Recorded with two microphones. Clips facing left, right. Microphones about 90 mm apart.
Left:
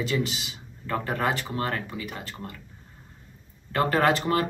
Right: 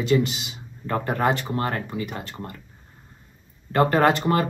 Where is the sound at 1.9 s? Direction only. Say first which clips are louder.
Right 6 dB; centre (ahead or behind).